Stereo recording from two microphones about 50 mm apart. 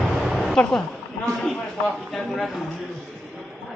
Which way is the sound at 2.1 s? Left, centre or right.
Centre.